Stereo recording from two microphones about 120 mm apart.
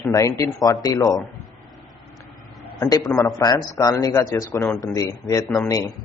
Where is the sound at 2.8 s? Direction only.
30° left (ahead or behind).